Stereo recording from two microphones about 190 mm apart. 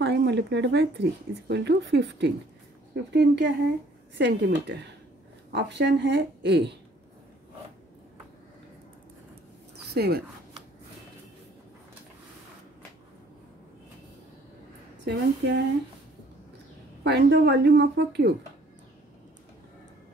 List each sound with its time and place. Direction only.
0.0 s a woman's voice: 65° right (ahead or behind)
9.9 s a woman's voice: 55° right (ahead or behind)
15.0 s speech: 65° right (ahead or behind)
17.0 s a woman's voice: 60° right (ahead or behind)